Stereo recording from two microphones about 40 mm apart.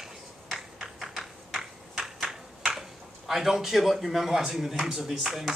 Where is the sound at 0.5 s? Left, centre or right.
Centre.